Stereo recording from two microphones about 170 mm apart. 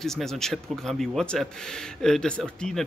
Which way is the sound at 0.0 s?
Centre (ahead or behind).